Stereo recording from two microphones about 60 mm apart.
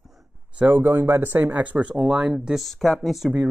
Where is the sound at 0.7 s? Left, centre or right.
Right; by 2.3 s centre.